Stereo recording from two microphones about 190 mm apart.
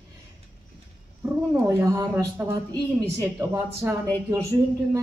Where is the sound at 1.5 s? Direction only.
15° right (ahead or behind).